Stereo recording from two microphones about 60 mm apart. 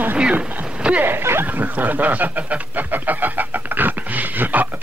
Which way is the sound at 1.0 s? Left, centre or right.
Right.